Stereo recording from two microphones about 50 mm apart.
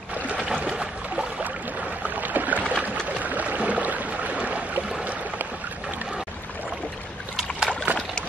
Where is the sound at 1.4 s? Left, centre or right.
Right.